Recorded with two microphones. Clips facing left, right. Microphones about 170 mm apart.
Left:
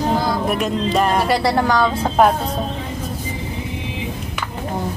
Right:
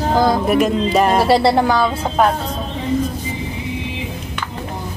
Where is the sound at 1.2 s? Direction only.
25° right (ahead or behind).